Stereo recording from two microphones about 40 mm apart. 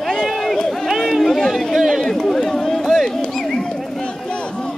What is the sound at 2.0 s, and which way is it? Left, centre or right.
Run, centre.